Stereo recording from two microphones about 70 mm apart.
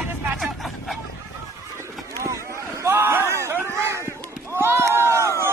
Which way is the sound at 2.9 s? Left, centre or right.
Right.